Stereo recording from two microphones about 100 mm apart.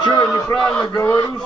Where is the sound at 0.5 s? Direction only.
10° left (ahead or behind).